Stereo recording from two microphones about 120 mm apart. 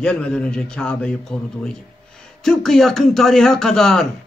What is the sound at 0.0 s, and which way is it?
Speech, 10° left (ahead or behind).